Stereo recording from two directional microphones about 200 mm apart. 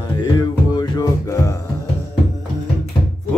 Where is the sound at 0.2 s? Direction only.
20° left (ahead or behind).